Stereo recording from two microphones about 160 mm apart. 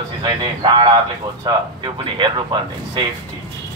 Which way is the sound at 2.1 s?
30° right (ahead or behind).